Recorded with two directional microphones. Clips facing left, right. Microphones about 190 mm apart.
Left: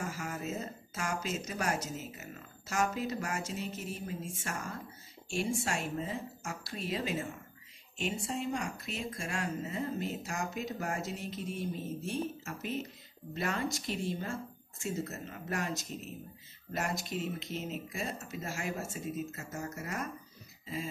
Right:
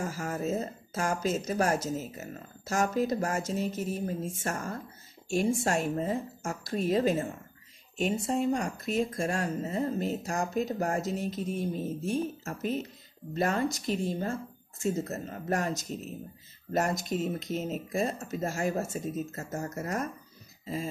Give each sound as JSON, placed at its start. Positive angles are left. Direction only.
{"t": 0.0, "sound": "a woman's voice", "side_deg": -40}
{"t": 20.6, "sound": "throat clearing", "side_deg": -40}